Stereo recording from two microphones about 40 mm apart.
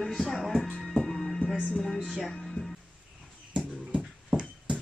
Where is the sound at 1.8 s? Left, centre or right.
Centre.